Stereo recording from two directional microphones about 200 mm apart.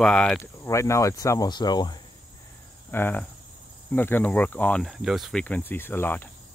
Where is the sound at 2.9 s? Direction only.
10° left (ahead or behind).